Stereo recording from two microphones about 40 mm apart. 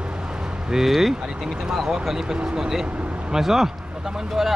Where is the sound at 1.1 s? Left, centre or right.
Centre.